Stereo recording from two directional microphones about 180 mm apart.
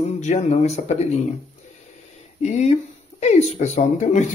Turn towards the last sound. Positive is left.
turn(degrees=40)  # may be behind; listen again after turning